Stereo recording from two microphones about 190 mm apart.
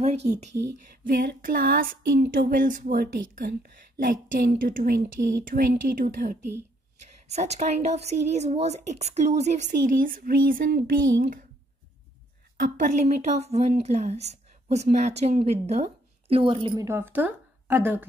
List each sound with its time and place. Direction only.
0.0 s a woman's voice: 35° right (ahead or behind)
1.0 s a sound: 50° right (ahead or behind)
7.3 s a woman's voice: 35° right (ahead or behind)
12.5 s a woman's voice: 45° right (ahead or behind); by 16.8 s 25° right (ahead or behind)
16.8 s a woman's voice: 10° right (ahead or behind)